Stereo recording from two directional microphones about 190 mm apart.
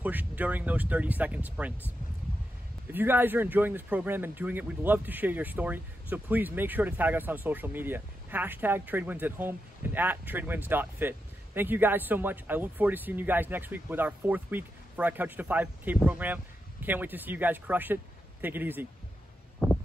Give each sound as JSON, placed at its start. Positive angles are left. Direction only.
{"t": 0.0, "sound": "speech", "side_deg": -10}
{"t": 2.9, "sound": "speech", "side_deg": -10}
{"t": 19.6, "sound": "a sound", "side_deg": 10}